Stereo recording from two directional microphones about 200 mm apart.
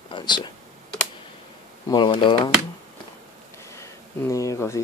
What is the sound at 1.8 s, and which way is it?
Speech, 25° left (ahead or behind).